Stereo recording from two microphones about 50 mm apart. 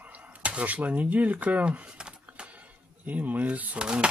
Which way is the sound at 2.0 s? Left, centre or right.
Centre.